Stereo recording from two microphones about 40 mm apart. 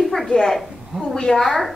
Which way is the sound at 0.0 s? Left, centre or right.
Centre.